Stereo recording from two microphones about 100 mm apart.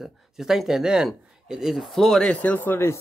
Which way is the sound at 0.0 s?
5° right (ahead or behind).